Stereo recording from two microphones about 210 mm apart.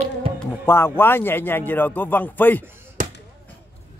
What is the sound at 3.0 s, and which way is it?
Basketball bounce, 35° right (ahead or behind).